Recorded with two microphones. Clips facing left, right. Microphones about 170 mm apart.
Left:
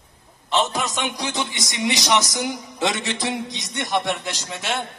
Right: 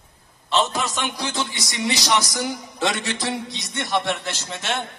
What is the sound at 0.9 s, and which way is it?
A man's voice, 20° left (ahead or behind).